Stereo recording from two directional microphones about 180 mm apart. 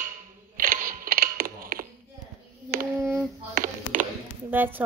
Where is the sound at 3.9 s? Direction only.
45° right (ahead or behind).